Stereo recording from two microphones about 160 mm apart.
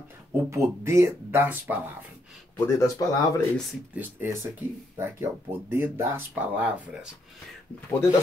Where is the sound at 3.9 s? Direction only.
15° right (ahead or behind).